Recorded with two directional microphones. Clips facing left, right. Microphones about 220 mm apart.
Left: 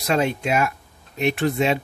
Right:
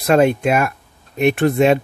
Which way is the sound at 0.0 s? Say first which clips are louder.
Right 8 dB; 55° right (ahead or behind).